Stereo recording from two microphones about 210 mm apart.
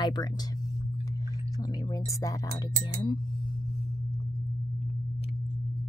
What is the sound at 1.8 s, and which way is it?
Speech, 15° left (ahead or behind).